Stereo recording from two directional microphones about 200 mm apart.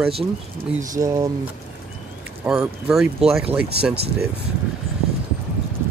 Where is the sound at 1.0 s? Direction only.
20° right (ahead or behind).